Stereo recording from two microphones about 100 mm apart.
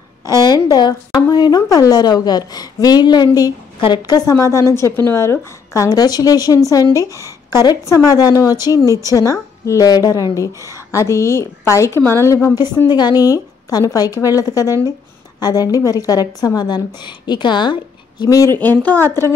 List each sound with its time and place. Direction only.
0.4 s a sound: 40° left (ahead or behind)
1.3 s a woman's voice: 45° left (ahead or behind)
4.3 s a woman's voice: 30° left (ahead or behind)
12.8 s a woman's voice: 45° left (ahead or behind)
18.2 s a woman's voice: 35° left (ahead or behind)
18.5 s a woman's voice: 20° left (ahead or behind)